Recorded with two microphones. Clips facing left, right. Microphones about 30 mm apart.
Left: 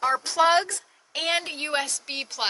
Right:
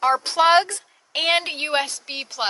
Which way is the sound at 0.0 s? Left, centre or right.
Right.